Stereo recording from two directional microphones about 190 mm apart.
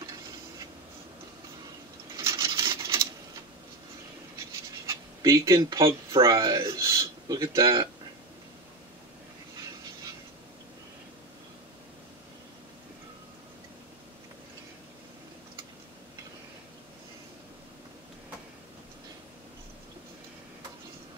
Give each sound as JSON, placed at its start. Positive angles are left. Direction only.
{"t": 2.1, "sound": "rub", "side_deg": -15}
{"t": 4.8, "sound": "speech", "side_deg": -15}